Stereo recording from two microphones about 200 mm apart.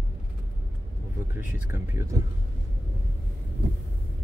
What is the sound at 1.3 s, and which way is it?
Speech, 10° right (ahead or behind).